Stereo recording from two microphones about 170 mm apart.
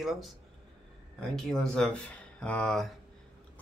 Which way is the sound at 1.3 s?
Centre (ahead or behind).